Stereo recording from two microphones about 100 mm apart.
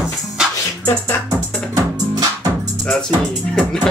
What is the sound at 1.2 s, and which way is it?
Music, 35° right (ahead or behind).